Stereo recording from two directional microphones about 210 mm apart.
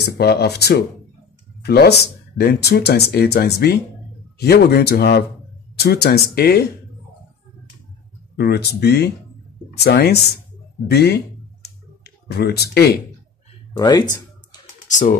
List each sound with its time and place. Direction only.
0.0 s speech: 50° left (ahead or behind)
8.4 s speech: 50° left (ahead or behind)
13.7 s speech: 20° left (ahead or behind)
14.9 s speech: 35° left (ahead or behind)